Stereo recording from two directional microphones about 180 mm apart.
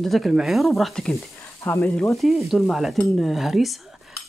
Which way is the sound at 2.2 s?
Centre (ahead or behind).